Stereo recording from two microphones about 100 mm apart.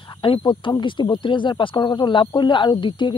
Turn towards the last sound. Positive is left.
turn(degrees=50)  # may be behind; listen again after turning